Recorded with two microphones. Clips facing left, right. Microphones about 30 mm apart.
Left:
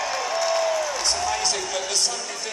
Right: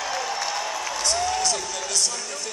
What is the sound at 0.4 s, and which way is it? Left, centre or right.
Applause, centre.